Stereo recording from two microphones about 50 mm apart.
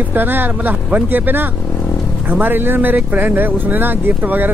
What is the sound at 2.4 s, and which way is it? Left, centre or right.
Speech, right.